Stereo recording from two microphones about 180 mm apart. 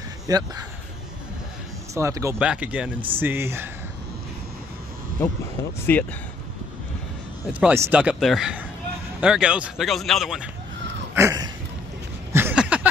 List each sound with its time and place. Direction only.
0.3 s speech: 20° right (ahead or behind)
2.0 s speech: 15° right (ahead or behind)
5.2 s speech: 15° left (ahead or behind)
7.6 s a man's voice: 10° right (ahead or behind)
11.1 s a sound: 20° right (ahead or behind)